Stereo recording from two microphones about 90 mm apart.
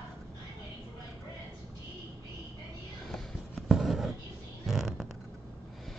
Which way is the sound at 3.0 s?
5° left (ahead or behind).